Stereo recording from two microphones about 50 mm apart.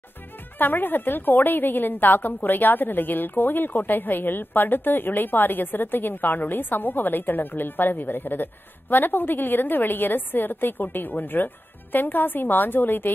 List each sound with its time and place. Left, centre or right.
0.6 s a woman's voice: left